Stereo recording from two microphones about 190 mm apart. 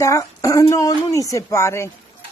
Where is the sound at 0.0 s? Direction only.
15° left (ahead or behind).